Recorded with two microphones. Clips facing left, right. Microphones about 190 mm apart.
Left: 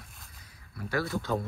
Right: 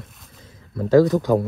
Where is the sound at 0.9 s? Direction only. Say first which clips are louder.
Right 16 dB; 20° right (ahead or behind).